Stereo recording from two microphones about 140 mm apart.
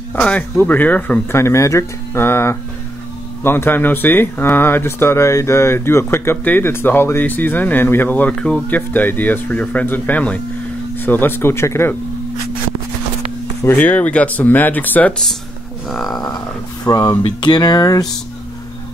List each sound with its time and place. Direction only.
0.1 s speech: 10° left (ahead or behind)
13.6 s speech: 10° left (ahead or behind)
15.9 s a sound: centre (ahead or behind)
16.3 s speech: 25° left (ahead or behind)